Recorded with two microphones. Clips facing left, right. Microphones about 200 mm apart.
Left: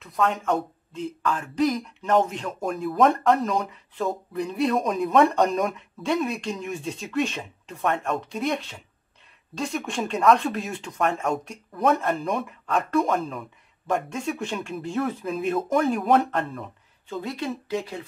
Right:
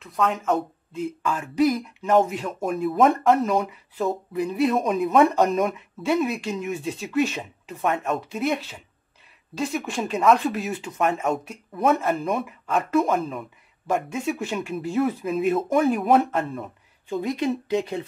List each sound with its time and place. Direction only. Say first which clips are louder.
0.0 s speech: even; centre (ahead or behind)
17.1 s speech: right 5 dB; 15° right (ahead or behind)